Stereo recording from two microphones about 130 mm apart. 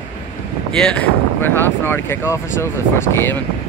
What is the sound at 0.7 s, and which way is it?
Speech, 5° left (ahead or behind).